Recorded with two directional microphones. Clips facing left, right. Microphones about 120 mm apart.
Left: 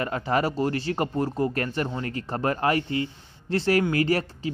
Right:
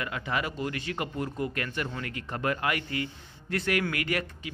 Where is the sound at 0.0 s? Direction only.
40° left (ahead or behind).